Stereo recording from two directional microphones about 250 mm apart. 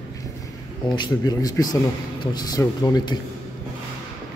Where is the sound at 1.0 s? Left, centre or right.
Centre.